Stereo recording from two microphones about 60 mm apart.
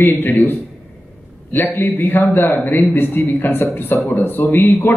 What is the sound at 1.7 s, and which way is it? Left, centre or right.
Speech, left.